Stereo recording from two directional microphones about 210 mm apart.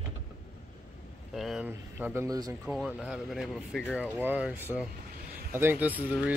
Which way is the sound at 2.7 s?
Centre (ahead or behind).